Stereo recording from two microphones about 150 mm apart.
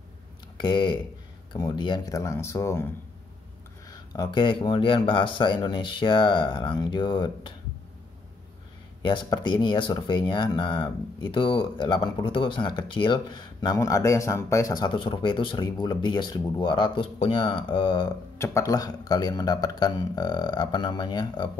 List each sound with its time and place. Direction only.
0.6 s speech: 30° left (ahead or behind)
3.9 s speech: 25° left (ahead or behind)
9.0 s speech: 30° left (ahead or behind)
18.4 s speech: 20° left (ahead or behind)